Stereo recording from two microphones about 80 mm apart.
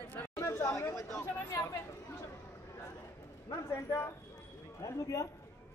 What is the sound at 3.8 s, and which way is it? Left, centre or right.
Speech, left.